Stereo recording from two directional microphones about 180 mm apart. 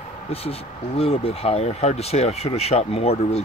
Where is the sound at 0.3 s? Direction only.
35° left (ahead or behind).